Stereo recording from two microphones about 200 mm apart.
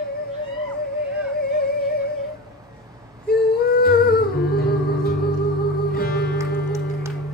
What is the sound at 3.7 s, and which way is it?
Humming, 50° left (ahead or behind).